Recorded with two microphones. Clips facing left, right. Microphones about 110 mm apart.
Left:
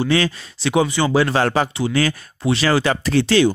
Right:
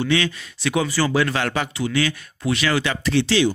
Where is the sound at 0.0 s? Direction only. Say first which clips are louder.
Left 3 dB; 35° left (ahead or behind).